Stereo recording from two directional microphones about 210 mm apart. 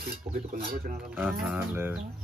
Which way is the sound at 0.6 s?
45° right (ahead or behind).